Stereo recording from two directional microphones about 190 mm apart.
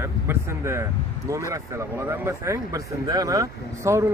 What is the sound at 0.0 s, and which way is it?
Speech, 15° right (ahead or behind).